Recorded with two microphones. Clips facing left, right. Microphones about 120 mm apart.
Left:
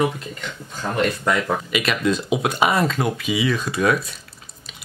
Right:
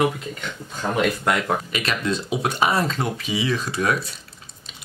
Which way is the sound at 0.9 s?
5° right (ahead or behind).